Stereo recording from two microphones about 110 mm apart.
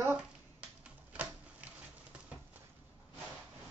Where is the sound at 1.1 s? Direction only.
15° right (ahead or behind).